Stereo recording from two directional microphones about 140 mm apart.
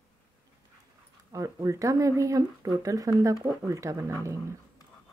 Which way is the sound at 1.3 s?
25° right (ahead or behind).